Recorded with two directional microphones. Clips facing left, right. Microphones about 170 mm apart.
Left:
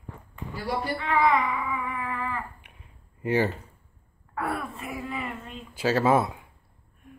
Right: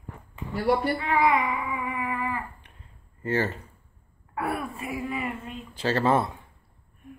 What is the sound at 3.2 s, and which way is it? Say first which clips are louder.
Speech: left 2 dB; 15° left (ahead or behind).